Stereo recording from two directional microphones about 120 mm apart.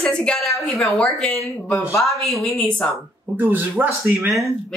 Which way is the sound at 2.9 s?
15° right (ahead or behind).